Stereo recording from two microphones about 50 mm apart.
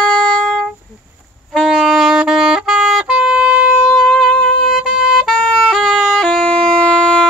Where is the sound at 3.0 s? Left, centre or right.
Centre.